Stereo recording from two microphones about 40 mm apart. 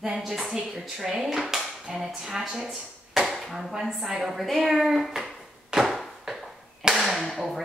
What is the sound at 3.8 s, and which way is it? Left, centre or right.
Speech, centre.